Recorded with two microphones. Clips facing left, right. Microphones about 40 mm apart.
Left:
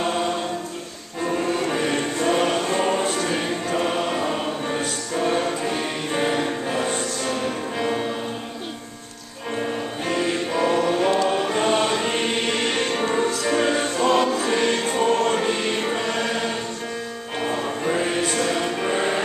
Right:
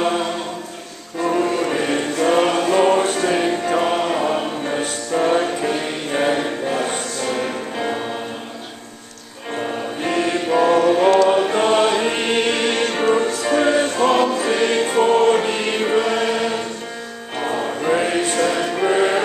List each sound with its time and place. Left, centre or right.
1.2 s music: centre
2.1 s music: right
3.8 s choir: centre
6.9 s music: centre
9.6 s music: right
11.2 s choir: centre
12.6 s music: centre
14.5 s choir: centre
17.4 s music: centre
17.8 s music: right